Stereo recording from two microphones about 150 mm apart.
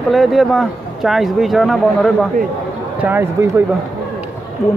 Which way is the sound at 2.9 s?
15° right (ahead or behind).